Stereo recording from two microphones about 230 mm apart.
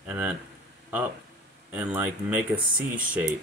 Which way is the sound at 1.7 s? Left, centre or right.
Centre.